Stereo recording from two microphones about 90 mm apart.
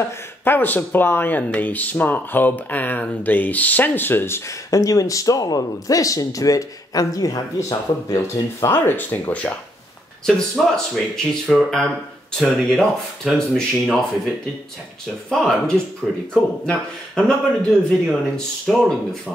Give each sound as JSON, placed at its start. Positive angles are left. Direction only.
{"t": 0.0, "sound": "speech", "side_deg": 20}
{"t": 4.6, "sound": "speech", "side_deg": 40}
{"t": 8.7, "sound": "speech", "side_deg": 25}
{"t": 10.2, "sound": "speech", "side_deg": 5}
{"t": 15.2, "sound": "a man's voice", "side_deg": 5}